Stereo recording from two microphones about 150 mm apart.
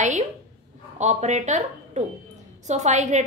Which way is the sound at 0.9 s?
50° right (ahead or behind).